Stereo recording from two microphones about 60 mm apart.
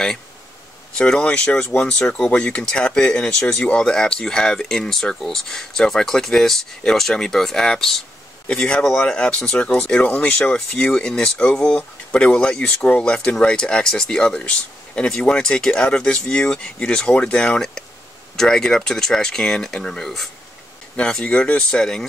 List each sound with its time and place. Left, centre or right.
0.9 s speech: centre
8.5 s speech: centre
20.9 s speech: centre